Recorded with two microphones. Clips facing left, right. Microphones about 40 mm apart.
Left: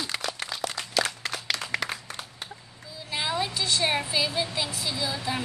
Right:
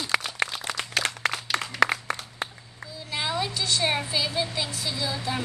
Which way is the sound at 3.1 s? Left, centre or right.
Centre.